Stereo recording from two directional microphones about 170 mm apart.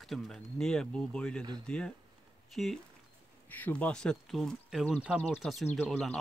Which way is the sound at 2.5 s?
Centre (ahead or behind).